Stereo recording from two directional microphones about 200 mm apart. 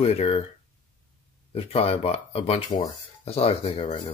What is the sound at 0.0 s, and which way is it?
Speech, 30° left (ahead or behind).